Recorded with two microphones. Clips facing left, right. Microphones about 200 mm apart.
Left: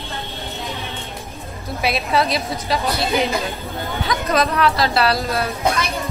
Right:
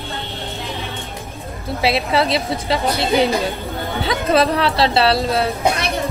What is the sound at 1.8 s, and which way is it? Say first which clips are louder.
A woman's voice: right 2 dB; 30° right (ahead or behind).